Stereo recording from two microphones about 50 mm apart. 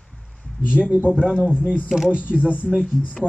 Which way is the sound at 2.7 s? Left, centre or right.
Centre.